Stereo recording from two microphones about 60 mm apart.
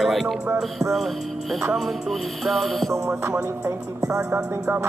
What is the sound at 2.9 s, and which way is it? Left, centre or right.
Music, right.